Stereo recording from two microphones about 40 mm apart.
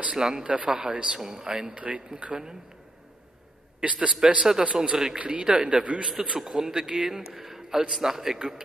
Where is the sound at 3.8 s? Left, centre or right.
Right.